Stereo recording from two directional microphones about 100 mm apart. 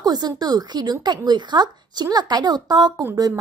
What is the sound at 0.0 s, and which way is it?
A woman's voice, 40° right (ahead or behind).